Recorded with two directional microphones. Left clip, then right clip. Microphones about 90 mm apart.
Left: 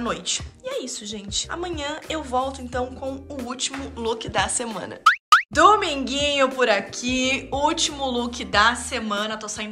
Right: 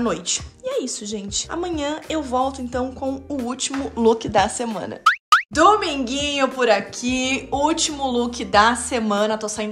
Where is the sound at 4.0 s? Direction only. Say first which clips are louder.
Right 8 dB; 90° right.